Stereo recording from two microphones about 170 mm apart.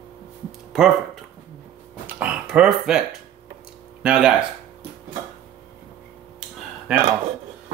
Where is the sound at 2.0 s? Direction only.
5° right (ahead or behind).